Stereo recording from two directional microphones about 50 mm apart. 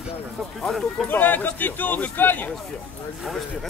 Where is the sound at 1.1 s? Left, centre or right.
Left.